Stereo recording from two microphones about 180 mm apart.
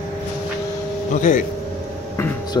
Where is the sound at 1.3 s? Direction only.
45° left (ahead or behind).